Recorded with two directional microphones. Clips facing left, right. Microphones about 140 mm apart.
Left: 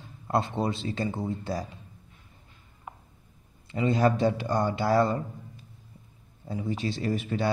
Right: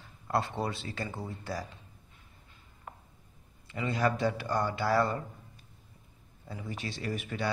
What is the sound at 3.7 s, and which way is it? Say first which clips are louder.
Speech: left 6 dB; 25° left (ahead or behind).